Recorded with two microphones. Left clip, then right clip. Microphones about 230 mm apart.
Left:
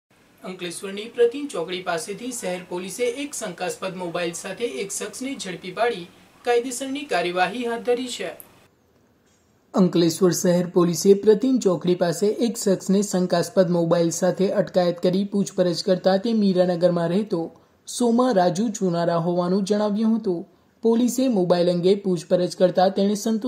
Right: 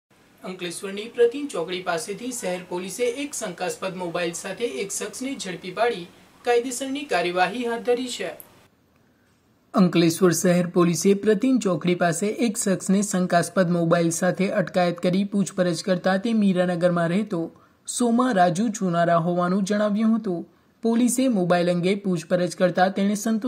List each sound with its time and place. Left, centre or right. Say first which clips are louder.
0.4 s speech: even; centre
9.7 s speech: even; centre
17.9 s speech: left 2 dB; right
18.3 s speech: even; centre
21.4 s speech: left 3 dB; centre